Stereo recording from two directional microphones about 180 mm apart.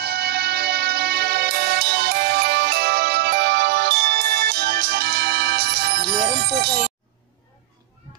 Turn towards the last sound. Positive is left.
turn(degrees=-60)  # may be behind; listen again after turning